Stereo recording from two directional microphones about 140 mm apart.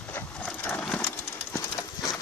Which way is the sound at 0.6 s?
10° left (ahead or behind).